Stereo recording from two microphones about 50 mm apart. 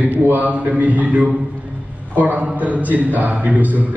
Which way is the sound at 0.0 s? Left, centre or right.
Right.